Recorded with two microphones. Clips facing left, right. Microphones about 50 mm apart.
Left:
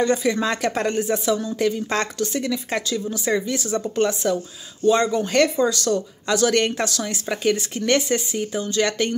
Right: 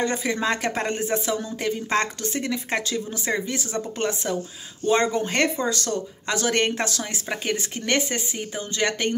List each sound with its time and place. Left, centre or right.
0.0 s speech: right
4.8 s speech: right